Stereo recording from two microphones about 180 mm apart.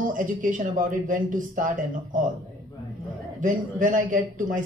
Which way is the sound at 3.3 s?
45° right (ahead or behind).